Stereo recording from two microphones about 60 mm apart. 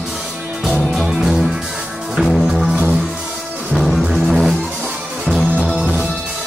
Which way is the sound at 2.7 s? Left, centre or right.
Centre.